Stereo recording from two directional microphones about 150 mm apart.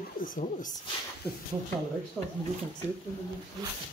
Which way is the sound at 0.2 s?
60° left (ahead or behind).